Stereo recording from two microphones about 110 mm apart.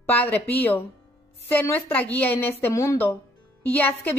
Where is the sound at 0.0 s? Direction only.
15° left (ahead or behind).